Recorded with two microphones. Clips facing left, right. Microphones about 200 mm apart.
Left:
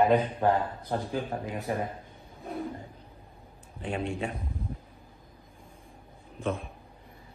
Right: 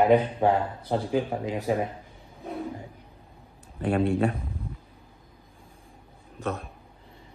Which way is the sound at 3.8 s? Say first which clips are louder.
Right 8 dB; 60° right (ahead or behind).